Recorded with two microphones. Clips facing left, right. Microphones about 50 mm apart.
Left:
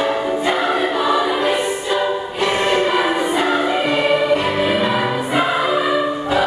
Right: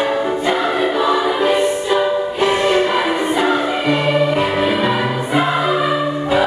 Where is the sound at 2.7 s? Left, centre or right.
Centre.